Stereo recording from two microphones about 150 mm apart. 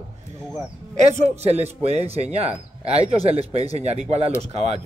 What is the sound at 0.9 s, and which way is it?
A man's voice, 50° right (ahead or behind).